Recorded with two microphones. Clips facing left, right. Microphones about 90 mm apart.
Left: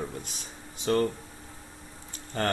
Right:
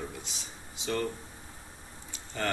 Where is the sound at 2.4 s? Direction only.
45° left (ahead or behind).